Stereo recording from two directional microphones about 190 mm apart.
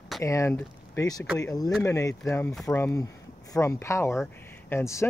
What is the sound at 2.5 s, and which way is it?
Speech, centre (ahead or behind).